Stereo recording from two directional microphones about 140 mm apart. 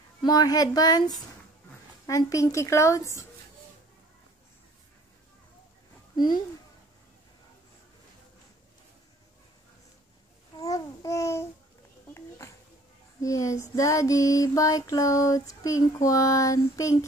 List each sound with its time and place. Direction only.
0.2 s child singing: 25° left (ahead or behind)
6.1 s speech: 30° left (ahead or behind)
10.6 s child singing: 25° left (ahead or behind)
12.1 s a sound: 20° left (ahead or behind)
13.2 s child singing: 20° left (ahead or behind)